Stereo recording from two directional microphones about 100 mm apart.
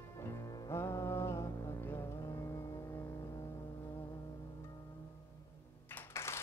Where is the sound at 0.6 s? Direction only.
30° left (ahead or behind).